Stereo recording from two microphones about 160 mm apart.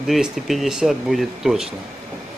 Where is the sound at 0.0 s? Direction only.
5° right (ahead or behind).